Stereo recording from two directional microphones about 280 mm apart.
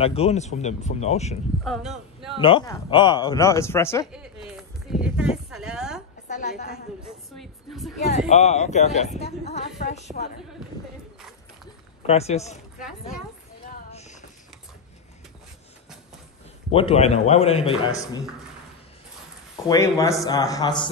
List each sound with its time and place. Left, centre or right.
0.0 s speech: left
1.6 s speech: centre
2.3 s a man's voice: centre
4.1 s a sound: centre
6.2 s a woman's voice: left
7.0 s a woman's voice: centre
8.3 s speech: left
11.1 s clip-clop: centre
12.1 s speech: left
13.7 s clip-clop: left
16.7 s a man's voice: left
19.5 s a man's voice: centre